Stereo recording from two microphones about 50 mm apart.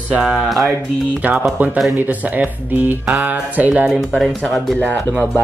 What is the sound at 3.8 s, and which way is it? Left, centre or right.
Speech, centre.